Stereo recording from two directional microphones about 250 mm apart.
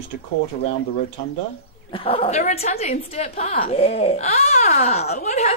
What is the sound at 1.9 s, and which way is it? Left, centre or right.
A woman's voice, left.